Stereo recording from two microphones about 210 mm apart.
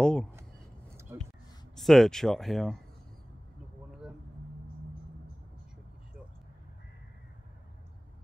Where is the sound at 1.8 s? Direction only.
Centre (ahead or behind).